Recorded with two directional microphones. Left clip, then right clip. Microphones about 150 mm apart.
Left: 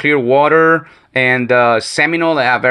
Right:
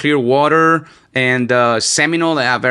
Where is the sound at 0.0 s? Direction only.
60° right (ahead or behind).